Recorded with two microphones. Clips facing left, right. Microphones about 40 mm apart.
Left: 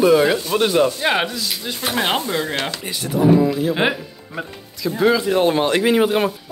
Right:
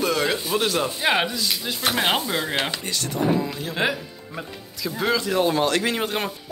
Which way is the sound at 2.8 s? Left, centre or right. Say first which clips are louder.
Left 6 dB; centre.